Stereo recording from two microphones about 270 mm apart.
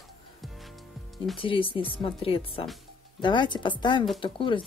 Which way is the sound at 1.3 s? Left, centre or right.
Centre.